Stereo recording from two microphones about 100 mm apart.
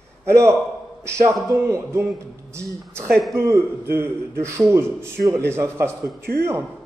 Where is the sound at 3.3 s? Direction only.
30° right (ahead or behind).